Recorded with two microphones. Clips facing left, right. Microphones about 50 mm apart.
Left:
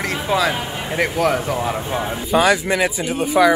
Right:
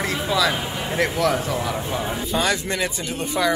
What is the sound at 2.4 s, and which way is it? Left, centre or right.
Speech, centre.